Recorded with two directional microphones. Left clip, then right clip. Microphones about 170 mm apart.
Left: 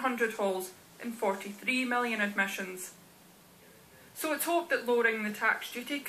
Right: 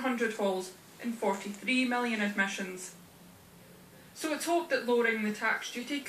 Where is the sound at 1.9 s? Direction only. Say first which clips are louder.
Left 1 dB; 40° left (ahead or behind).